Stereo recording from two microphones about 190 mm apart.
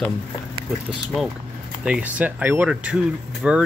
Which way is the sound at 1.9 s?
5° right (ahead or behind).